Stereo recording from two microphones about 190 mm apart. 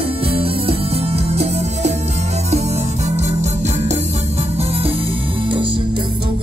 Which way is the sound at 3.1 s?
35° right (ahead or behind).